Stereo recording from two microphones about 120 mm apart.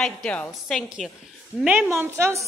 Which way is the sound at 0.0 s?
5° left (ahead or behind).